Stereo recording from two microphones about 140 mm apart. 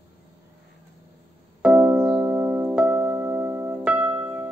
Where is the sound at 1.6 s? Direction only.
15° right (ahead or behind).